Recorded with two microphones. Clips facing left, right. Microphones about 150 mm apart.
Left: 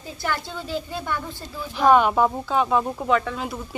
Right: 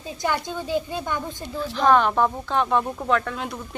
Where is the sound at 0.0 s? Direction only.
15° right (ahead or behind).